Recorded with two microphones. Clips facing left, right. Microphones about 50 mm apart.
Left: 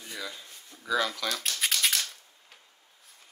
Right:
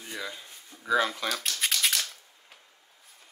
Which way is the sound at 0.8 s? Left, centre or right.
Right.